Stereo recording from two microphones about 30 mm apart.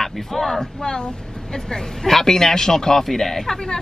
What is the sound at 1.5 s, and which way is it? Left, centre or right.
A man's voice, centre.